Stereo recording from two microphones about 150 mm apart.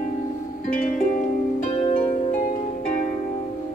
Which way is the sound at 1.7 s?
50° left (ahead or behind).